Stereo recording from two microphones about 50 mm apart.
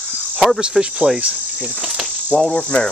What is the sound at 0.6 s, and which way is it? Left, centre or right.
Cricket, centre.